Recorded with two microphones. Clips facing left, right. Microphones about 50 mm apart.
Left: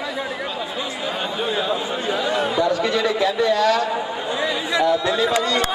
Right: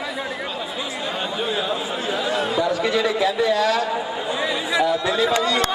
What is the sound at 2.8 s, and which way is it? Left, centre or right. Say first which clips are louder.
A man's voice: even; centre.